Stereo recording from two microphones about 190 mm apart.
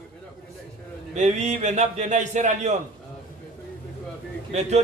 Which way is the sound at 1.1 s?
35° right (ahead or behind).